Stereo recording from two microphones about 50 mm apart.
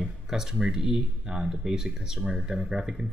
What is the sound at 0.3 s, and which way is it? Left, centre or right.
Speech, centre.